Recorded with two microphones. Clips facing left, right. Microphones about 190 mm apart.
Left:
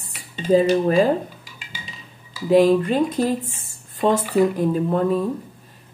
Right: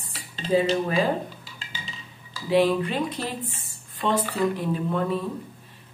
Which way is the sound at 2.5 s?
45° left (ahead or behind).